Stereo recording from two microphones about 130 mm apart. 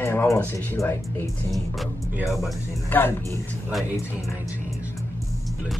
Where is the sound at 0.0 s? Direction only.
20° left (ahead or behind).